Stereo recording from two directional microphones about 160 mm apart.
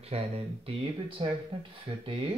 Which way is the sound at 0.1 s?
35° right (ahead or behind).